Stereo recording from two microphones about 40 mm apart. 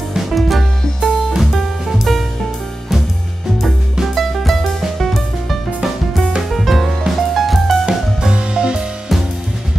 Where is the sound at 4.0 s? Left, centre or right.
Centre.